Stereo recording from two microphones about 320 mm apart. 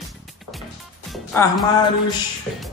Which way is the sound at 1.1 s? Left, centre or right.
Centre.